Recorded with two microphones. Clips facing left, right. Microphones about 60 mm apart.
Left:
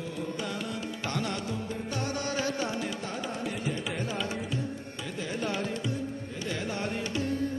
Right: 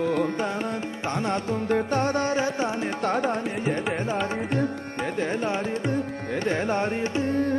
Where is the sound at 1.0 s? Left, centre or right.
Right.